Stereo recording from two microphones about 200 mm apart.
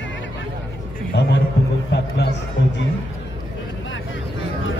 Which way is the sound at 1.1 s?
60° left (ahead or behind).